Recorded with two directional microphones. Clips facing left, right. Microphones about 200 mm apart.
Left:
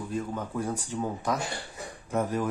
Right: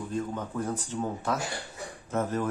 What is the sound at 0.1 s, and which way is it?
Speech, 10° left (ahead or behind).